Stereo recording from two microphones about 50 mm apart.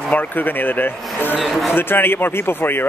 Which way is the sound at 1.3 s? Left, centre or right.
Centre.